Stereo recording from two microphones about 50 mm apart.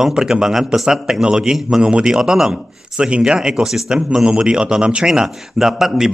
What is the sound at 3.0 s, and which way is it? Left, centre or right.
A man's voice, right.